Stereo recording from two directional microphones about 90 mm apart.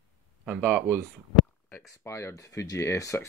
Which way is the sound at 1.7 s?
35° left (ahead or behind).